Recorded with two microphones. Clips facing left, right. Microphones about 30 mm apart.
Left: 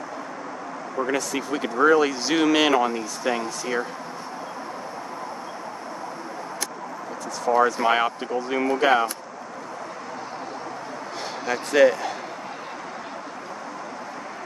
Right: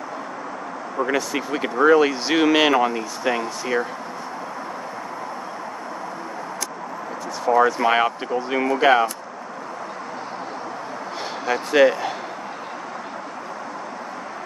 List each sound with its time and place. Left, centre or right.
0.9 s speech: centre
7.4 s speech: centre
11.4 s speech: centre